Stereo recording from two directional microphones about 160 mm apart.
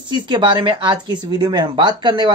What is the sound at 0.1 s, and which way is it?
Speech, 30° right (ahead or behind).